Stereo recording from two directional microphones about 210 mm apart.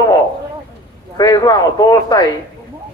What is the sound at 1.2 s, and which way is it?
Speech, 15° left (ahead or behind).